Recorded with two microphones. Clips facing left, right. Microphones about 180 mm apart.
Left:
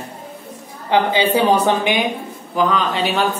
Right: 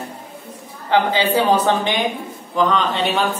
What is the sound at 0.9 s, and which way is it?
A woman's voice, 15° left (ahead or behind).